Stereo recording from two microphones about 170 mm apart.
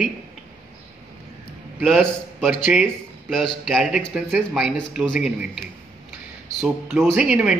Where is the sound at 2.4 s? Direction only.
Centre (ahead or behind).